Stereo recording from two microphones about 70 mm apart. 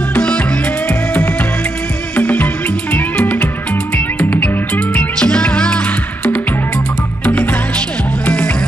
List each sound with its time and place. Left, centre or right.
0.1 s music: centre